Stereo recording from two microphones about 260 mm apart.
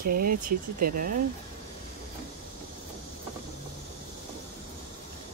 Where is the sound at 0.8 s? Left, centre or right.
Right.